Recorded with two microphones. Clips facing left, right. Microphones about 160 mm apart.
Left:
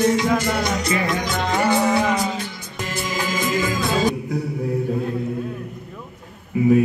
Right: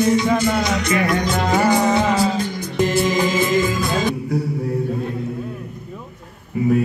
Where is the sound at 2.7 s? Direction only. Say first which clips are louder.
Right 9 dB; centre (ahead or behind).